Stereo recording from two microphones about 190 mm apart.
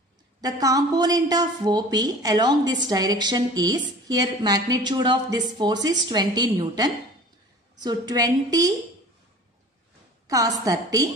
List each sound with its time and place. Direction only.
0.4 s speech: 20° right (ahead or behind)
10.2 s a woman's voice: 20° right (ahead or behind)